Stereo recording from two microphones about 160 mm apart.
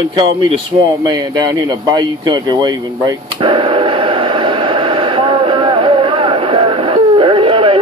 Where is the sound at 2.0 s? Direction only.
30° right (ahead or behind).